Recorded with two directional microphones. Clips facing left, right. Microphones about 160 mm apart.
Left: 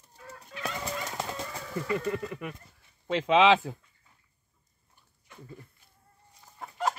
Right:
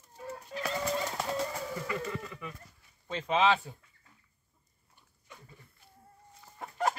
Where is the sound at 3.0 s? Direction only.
90° left.